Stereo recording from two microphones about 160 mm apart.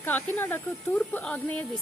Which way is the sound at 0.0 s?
10° left (ahead or behind).